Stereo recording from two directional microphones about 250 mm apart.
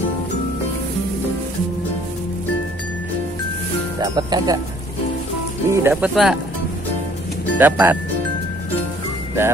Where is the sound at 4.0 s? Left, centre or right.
Centre.